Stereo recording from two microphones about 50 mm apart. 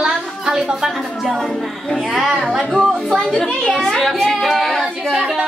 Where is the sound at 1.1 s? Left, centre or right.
Centre.